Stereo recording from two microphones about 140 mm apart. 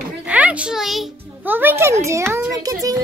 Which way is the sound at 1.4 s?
15° right (ahead or behind).